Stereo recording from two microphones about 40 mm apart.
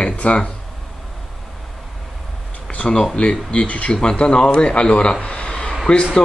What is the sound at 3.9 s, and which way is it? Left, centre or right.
A man's voice, left.